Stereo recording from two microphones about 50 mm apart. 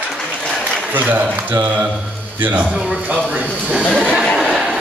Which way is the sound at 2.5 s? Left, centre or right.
Centre.